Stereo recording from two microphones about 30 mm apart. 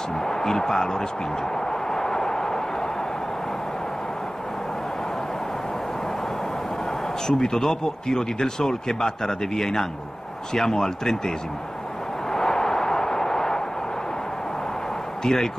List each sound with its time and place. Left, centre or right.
0.2 s speech: centre
1.7 s vehicle: centre
7.2 s speech: centre
12.3 s vehicle: centre
15.2 s speech: centre